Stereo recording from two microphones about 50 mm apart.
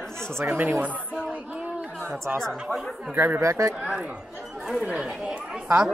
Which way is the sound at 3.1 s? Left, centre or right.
Right.